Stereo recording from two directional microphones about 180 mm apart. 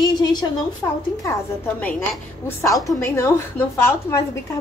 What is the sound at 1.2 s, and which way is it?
A woman's voice, 10° left (ahead or behind).